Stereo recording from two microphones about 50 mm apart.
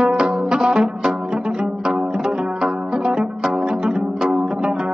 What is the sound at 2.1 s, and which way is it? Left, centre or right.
Music, centre.